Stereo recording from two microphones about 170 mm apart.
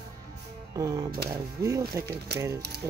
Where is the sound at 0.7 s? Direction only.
20° right (ahead or behind).